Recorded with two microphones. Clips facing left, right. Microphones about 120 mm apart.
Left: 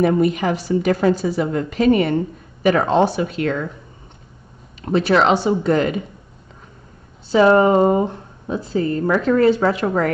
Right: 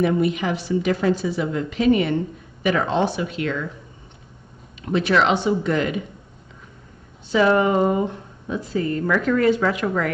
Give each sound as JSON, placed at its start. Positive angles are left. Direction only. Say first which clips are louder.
{"t": 0.0, "sound": "a woman's voice", "louder": "left 3 dB", "side_deg": 45}
{"t": 4.8, "sound": "speech", "louder": "left 3 dB", "side_deg": 40}
{"t": 7.2, "sound": "speech", "louder": "left 5 dB", "side_deg": 35}